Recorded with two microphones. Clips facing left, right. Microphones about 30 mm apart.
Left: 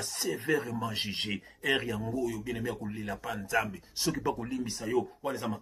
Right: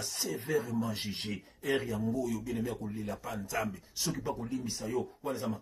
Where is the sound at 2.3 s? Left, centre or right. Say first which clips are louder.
Even; left.